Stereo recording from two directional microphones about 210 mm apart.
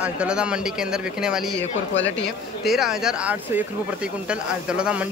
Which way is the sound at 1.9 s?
65° left (ahead or behind).